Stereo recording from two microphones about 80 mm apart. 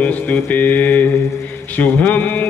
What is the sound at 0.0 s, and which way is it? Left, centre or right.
Mantra, left.